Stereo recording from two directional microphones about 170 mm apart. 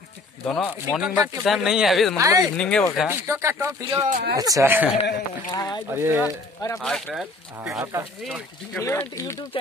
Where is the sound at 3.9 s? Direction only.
45° right (ahead or behind).